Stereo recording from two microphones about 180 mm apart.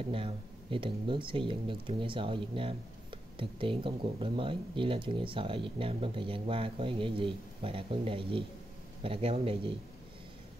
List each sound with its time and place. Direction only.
0.0 s a man's voice: 30° right (ahead or behind)